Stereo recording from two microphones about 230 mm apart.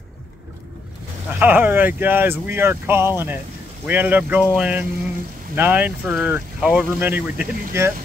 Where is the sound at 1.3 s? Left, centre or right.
Centre.